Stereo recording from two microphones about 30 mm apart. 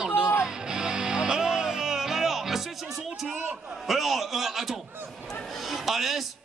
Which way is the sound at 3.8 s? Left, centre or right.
Centre.